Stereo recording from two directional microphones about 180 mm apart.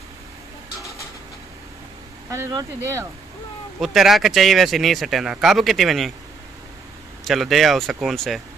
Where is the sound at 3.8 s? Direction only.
Centre (ahead or behind).